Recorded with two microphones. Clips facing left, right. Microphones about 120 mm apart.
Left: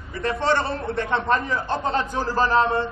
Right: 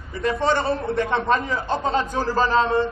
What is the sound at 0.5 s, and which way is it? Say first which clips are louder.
A man's voice: right 3 dB; 15° right (ahead or behind).